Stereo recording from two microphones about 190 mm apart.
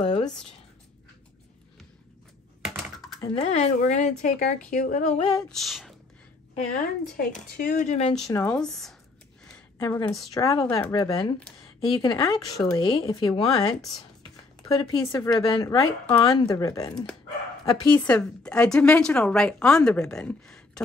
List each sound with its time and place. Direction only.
2.6 s computer keyboard: centre (ahead or behind)
3.3 s speech: 35° left (ahead or behind)
5.5 s speech: centre (ahead or behind)
6.5 s speech: 40° left (ahead or behind)
8.3 s speech: 20° left (ahead or behind)
8.5 s a woman's voice: centre (ahead or behind)
9.8 s a woman's voice: 20° left (ahead or behind)
12.4 s a woman's voice: centre (ahead or behind)
12.7 s a woman's voice: 25° left (ahead or behind); by 20.8 s 5° left (ahead or behind)